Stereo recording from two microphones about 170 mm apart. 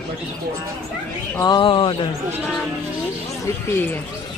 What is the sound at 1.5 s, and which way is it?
Speech, 30° left (ahead or behind).